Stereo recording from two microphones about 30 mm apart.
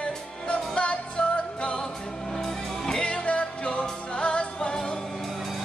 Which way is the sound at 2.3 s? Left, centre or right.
Centre.